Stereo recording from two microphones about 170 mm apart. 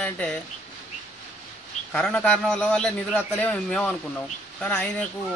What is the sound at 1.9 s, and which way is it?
A man's voice, 5° left (ahead or behind).